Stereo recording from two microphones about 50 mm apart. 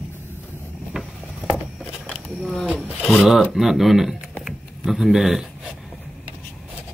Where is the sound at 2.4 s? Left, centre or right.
Centre.